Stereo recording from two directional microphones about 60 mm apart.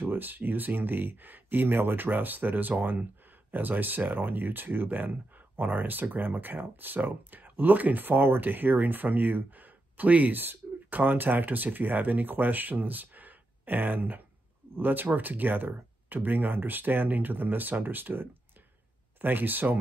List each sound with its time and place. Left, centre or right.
0.0 s speech: right